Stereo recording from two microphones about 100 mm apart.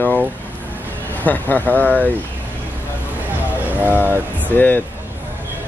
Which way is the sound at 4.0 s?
20° left (ahead or behind).